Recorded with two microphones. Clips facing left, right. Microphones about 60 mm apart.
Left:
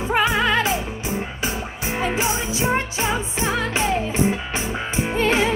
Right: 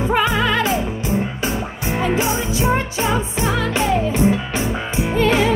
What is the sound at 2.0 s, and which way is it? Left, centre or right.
Music, centre.